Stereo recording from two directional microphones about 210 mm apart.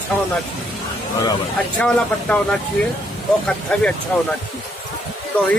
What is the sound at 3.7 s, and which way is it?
Speech, 5° left (ahead or behind).